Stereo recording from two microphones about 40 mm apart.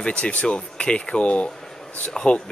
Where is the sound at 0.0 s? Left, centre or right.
Left.